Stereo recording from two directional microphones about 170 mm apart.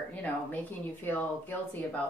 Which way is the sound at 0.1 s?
10° left (ahead or behind).